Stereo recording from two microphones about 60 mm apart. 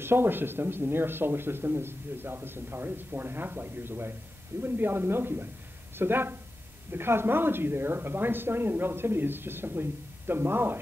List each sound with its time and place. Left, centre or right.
0.0 s speech: right